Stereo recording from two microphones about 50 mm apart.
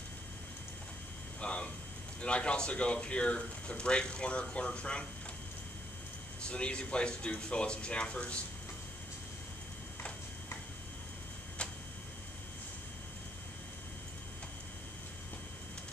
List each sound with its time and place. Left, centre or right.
1.4 s a sound: left
2.2 s speech: left
6.4 s speech: centre